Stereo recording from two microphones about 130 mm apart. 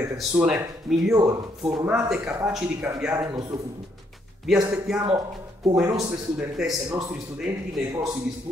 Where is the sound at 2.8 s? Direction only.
20° right (ahead or behind).